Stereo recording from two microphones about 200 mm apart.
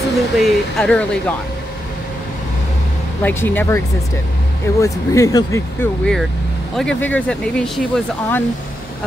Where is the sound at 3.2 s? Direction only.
10° left (ahead or behind).